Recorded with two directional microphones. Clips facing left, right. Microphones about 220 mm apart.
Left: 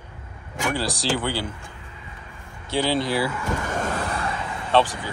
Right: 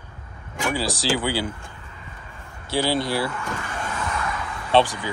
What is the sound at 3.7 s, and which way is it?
Vehicle, 40° left (ahead or behind).